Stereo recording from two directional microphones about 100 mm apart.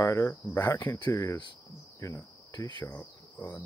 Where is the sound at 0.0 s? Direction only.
30° left (ahead or behind).